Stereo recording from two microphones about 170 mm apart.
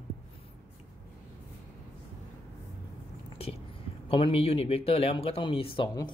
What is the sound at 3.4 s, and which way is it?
Speech, 35° left (ahead or behind).